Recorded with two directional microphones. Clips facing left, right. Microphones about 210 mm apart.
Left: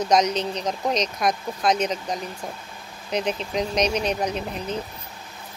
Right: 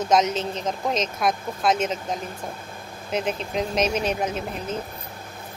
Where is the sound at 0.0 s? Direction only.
Centre (ahead or behind).